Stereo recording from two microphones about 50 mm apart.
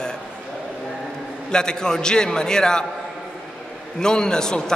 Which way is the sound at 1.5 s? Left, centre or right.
Centre.